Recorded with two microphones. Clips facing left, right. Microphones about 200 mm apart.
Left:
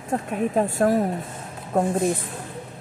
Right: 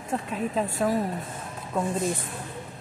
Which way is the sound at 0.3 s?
55° left (ahead or behind).